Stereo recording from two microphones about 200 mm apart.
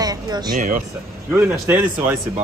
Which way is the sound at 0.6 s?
40° right (ahead or behind).